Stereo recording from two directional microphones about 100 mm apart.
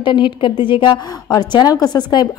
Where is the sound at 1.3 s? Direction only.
40° left (ahead or behind).